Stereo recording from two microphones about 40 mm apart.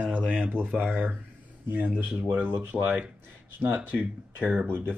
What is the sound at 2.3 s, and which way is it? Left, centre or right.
Speech, right.